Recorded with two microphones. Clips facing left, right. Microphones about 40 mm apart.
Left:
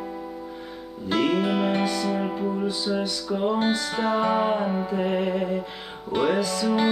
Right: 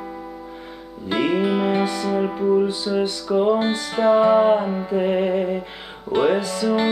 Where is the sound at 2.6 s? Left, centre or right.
Right.